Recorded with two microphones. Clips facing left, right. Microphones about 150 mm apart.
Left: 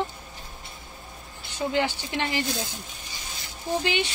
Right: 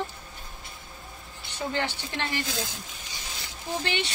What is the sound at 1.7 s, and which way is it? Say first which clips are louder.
Speech: left 5 dB; 15° left (ahead or behind).